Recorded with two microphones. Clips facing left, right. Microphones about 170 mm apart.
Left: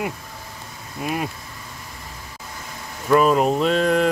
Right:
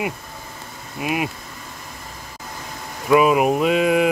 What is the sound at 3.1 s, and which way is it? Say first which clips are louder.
Speech: right 1 dB; 10° right (ahead or behind).